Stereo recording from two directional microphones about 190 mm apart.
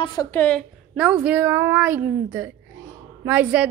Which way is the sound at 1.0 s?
5° right (ahead or behind).